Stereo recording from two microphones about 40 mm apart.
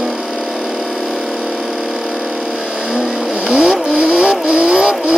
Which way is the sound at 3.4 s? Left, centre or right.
Centre.